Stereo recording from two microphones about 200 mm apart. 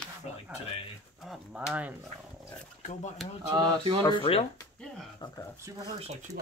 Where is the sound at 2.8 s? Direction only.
35° left (ahead or behind).